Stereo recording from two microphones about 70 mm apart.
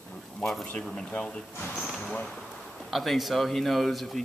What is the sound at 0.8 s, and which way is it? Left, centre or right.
Speech, centre.